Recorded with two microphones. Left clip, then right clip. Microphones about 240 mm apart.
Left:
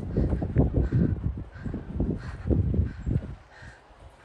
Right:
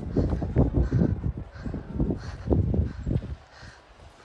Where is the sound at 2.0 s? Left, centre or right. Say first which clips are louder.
Right 2 dB; left.